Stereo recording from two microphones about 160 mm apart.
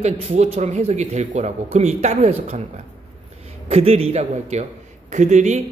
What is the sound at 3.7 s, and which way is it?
Speech, 40° right (ahead or behind).